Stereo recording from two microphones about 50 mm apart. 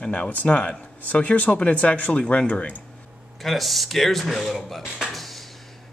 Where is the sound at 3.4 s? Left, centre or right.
Centre.